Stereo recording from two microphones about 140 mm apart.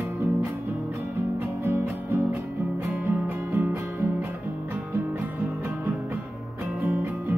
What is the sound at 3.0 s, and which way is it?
Music, 15° right (ahead or behind).